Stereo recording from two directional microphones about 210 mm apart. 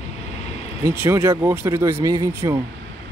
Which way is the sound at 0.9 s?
10° right (ahead or behind).